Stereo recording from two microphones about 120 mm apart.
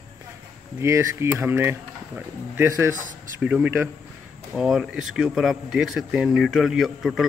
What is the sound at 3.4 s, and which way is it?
Speech, 10° right (ahead or behind).